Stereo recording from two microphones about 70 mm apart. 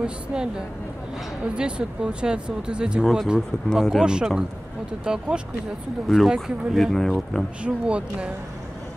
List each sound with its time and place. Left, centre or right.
0.0 s speech: centre
3.0 s speech: centre
4.0 s speech: centre
7.6 s speech: centre